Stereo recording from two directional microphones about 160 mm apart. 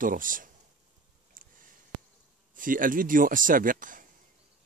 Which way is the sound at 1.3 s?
60° right (ahead or behind).